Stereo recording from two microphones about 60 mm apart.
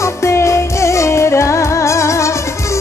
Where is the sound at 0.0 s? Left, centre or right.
Left.